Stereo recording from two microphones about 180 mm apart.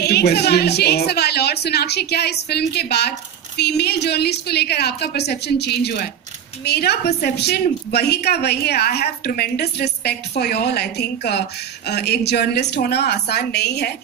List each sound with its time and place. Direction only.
0.0 s a woman's voice: 65° left (ahead or behind)